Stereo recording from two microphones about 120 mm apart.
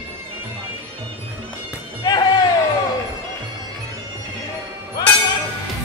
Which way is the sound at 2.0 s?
35° left (ahead or behind).